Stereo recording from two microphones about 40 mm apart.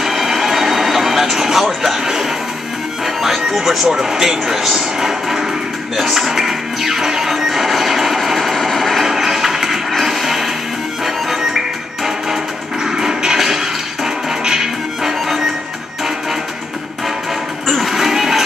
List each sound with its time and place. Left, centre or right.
0.0 s music: centre
3.9 s speech: centre
5.9 s music: centre
9.0 s music: centre
17.8 s music: centre